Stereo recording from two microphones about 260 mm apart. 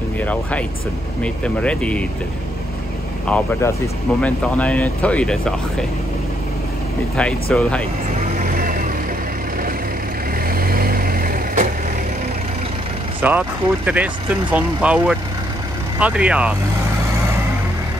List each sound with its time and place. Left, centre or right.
0.2 s speech: centre
3.3 s speech: centre
7.2 s speech: centre
8.4 s vehicle: right
10.5 s vehicle: right
13.2 s speech: centre